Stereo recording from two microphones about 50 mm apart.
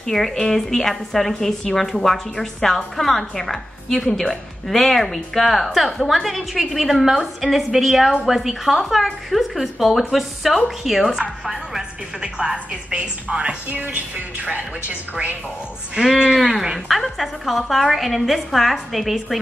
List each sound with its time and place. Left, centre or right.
0.0 s a woman's voice: centre; by 13.6 s right
13.7 s a woman's voice: right; by 16.3 s centre
16.3 s a woman's voice: centre